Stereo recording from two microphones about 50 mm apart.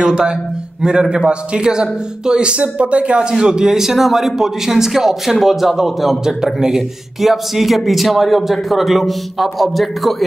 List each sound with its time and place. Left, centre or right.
0.0 s a man's voice: centre